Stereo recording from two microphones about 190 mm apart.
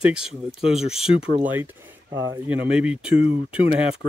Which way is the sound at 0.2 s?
30° left (ahead or behind).